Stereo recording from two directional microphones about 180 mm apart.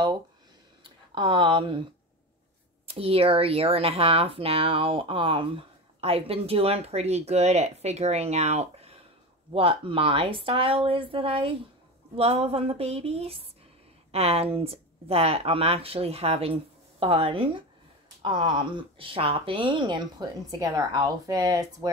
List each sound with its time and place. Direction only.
0.8 s speech: 25° right (ahead or behind)
2.9 s speech: 30° right (ahead or behind)